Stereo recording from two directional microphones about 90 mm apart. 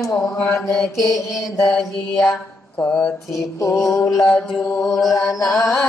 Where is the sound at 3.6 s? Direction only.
35° left (ahead or behind).